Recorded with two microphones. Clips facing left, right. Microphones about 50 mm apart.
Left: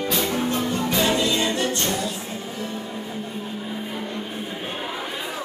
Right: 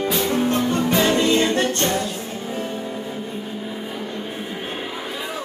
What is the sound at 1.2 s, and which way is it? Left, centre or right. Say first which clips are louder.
Music: right 4 dB; right.